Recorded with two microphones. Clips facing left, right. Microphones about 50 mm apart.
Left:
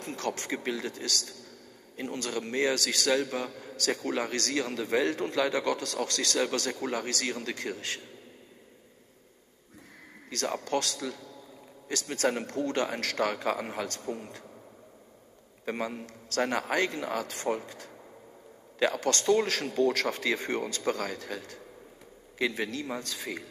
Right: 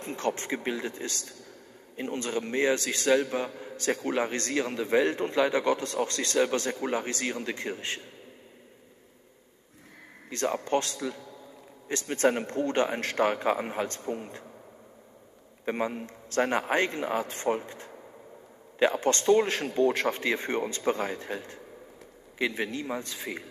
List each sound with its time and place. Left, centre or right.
0.0 s a man's voice: right
10.6 s a man's voice: right
11.9 s a man's voice: right
15.6 s a man's voice: right